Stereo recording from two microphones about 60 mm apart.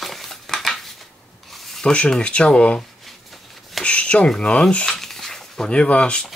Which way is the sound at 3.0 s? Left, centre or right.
Centre.